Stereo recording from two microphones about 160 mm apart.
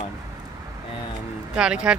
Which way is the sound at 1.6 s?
5° right (ahead or behind).